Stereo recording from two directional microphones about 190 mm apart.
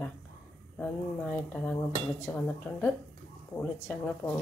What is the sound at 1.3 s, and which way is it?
Speech, 5° left (ahead or behind).